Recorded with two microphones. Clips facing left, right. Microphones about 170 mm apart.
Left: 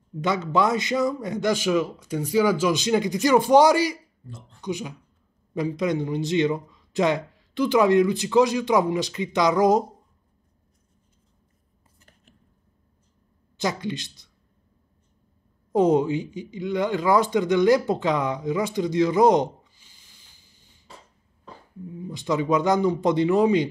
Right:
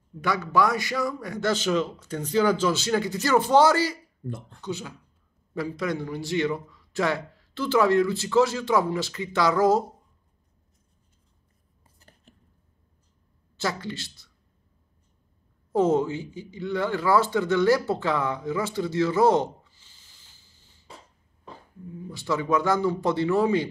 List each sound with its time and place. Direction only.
0.2 s speech: 20° left (ahead or behind)
12.0 s whispering: 35° right (ahead or behind)
13.6 s speech: 15° left (ahead or behind)
15.7 s speech: 15° left (ahead or behind)
22.1 s speech: 20° left (ahead or behind)